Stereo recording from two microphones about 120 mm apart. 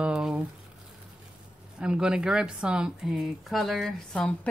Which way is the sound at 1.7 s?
5° right (ahead or behind).